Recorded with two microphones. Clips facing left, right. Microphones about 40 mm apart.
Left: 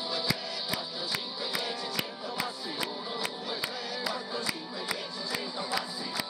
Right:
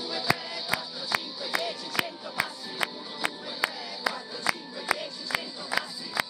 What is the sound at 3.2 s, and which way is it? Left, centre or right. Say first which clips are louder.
Music: right 4 dB; right.